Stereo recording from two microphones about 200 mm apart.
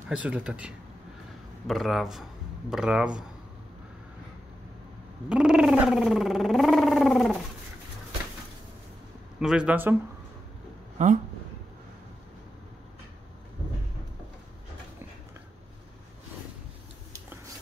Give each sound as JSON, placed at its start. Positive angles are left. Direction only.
{"t": 0.1, "sound": "speech", "side_deg": -5}
{"t": 5.3, "sound": "a sound", "side_deg": -5}
{"t": 9.4, "sound": "speech", "side_deg": -5}
{"t": 11.0, "sound": "speech", "side_deg": -35}